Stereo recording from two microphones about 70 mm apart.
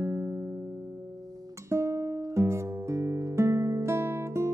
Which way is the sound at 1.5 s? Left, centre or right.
Right.